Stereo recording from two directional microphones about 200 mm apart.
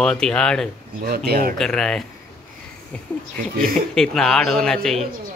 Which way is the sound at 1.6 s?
5° left (ahead or behind).